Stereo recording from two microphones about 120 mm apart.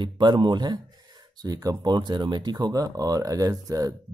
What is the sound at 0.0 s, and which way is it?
Speech, 40° right (ahead or behind).